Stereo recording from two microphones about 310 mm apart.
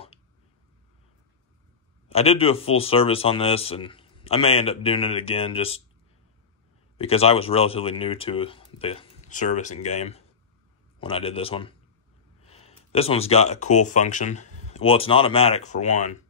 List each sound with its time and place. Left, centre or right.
2.1 s speech: centre
7.0 s speech: centre